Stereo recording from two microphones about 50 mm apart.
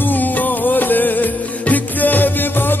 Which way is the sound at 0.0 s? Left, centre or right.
Left.